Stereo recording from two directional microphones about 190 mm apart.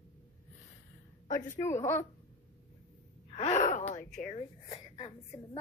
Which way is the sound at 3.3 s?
40° left (ahead or behind).